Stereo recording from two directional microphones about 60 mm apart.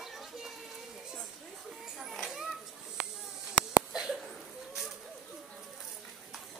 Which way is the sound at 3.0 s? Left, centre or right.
Centre.